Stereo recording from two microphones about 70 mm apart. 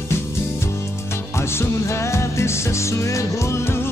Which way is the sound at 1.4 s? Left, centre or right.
Left.